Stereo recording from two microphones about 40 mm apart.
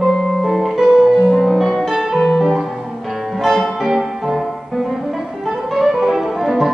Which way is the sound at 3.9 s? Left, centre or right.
Centre.